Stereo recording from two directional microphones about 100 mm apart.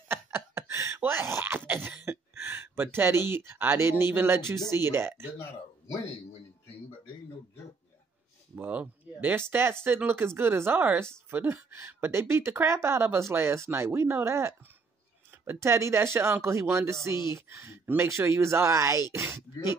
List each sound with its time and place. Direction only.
0.1 s a sound: 25° right (ahead or behind)
3.3 s speech: 25° right (ahead or behind)
8.5 s speech: 20° right (ahead or behind)